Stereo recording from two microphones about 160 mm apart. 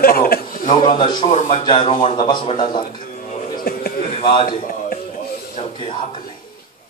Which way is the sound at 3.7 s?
70° left (ahead or behind).